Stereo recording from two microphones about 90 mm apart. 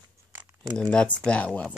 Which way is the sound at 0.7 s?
10° left (ahead or behind).